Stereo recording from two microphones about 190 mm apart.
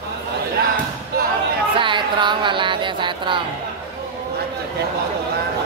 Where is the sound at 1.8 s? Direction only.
25° right (ahead or behind).